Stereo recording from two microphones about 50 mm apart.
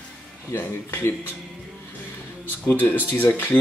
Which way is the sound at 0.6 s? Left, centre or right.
Left.